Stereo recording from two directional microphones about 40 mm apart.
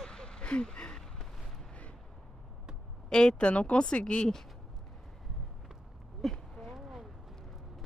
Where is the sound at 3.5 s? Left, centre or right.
Left.